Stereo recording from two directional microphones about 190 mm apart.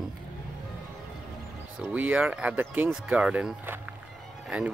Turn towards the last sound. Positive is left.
turn(degrees=-5)  # may be behind; listen again after turning